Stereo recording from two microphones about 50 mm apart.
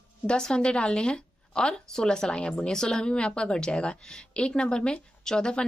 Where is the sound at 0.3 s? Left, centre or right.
Centre.